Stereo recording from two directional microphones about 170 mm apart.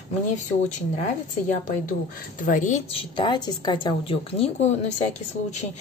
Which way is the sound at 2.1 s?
50° left (ahead or behind).